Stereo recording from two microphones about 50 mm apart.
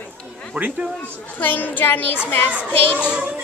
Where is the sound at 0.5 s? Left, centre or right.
Right.